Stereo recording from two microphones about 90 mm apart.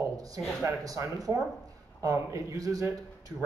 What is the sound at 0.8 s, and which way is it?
Speech, 40° right (ahead or behind).